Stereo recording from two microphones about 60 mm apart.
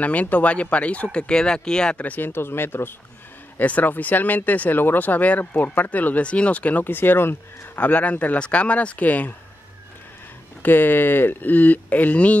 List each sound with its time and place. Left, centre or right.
0.0 s speech: left
2.0 s speech: left
3.5 s speech: left
10.6 s speech: left